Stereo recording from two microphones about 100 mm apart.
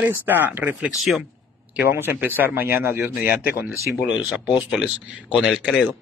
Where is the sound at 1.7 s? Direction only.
25° right (ahead or behind); by 5.9 s centre (ahead or behind).